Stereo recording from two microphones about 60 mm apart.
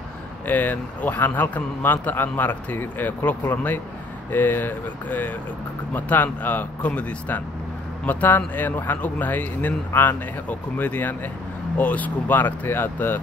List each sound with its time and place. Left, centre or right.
0.5 s speech: left
4.3 s speech: left